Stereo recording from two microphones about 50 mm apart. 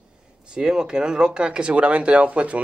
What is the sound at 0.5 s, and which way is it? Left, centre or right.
A man's voice, centre.